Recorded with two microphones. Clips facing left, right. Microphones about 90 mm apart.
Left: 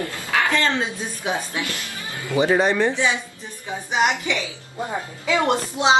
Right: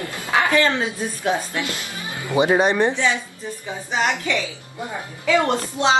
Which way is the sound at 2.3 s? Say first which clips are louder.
Right 1 dB; 20° right (ahead or behind).